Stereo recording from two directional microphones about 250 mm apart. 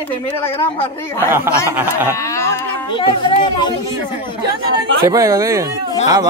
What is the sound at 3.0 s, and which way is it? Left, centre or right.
Speech, centre.